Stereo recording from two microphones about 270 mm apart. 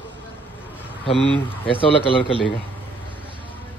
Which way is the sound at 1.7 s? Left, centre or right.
Centre.